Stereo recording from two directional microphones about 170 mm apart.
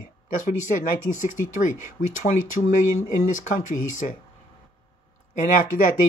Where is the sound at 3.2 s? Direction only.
50° left (ahead or behind).